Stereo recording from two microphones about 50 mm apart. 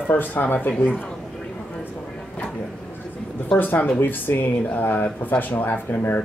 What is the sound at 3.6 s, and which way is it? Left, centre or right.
Speech, left.